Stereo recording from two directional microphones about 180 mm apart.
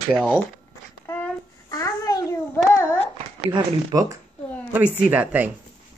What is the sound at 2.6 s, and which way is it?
Child singing, 15° left (ahead or behind).